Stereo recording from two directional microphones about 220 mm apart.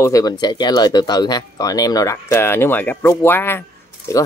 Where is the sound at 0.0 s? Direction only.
15° left (ahead or behind).